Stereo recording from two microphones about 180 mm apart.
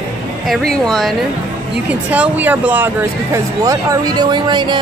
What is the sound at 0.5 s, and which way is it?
Speech, centre (ahead or behind).